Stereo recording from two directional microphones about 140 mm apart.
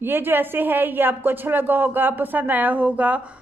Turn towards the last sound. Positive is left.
turn(degrees=-10)  # may be behind; listen again after turning